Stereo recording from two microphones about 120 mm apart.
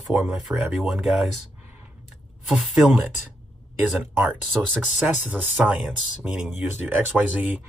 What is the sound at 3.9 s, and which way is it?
Speech, 15° right (ahead or behind).